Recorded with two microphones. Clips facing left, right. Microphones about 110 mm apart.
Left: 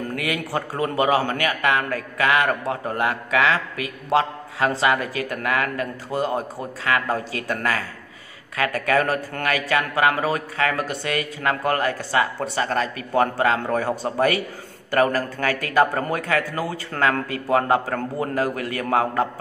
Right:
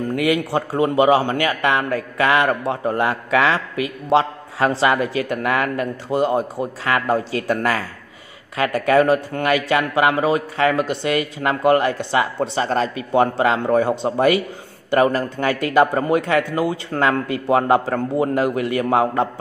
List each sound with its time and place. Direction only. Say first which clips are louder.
0.1 s a man's voice: right 9 dB; 25° right (ahead or behind)